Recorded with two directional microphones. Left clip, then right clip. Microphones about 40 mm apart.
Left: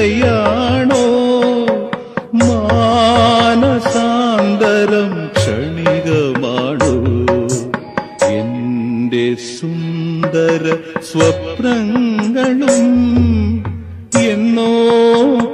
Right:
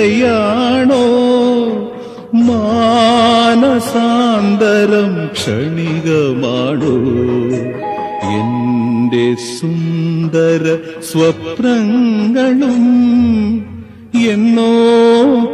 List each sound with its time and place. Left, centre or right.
0.0 s music: left
3.3 s music: left
4.0 s music: left
6.0 s music: left
6.4 s music: left
9.1 s music: left
9.9 s music: left
10.5 s mantra: left
11.2 s mantra: left
12.2 s mantra: left
12.9 s music: left
14.3 s mantra: left